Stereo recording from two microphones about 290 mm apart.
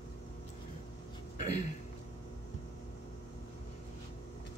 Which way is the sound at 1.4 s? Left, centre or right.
Left.